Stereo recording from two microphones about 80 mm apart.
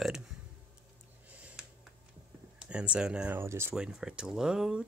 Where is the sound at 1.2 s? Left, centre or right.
Centre.